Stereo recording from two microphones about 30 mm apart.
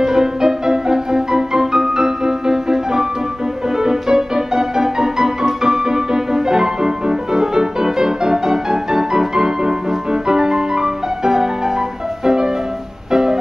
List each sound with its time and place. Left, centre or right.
0.0 s music: centre
13.1 s music: centre